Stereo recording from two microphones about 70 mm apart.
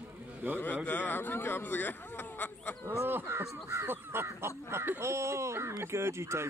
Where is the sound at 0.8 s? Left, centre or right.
Left.